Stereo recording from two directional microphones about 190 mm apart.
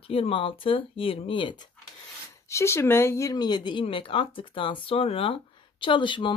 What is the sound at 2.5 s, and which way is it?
Speech, 15° left (ahead or behind).